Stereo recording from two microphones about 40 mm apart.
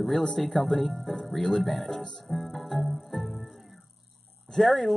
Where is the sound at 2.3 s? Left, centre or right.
Centre.